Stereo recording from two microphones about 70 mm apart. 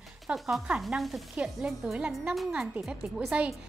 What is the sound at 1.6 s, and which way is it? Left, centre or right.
A woman's voice, centre.